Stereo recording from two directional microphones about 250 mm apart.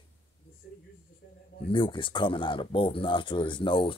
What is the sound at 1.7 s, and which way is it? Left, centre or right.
Speech, centre.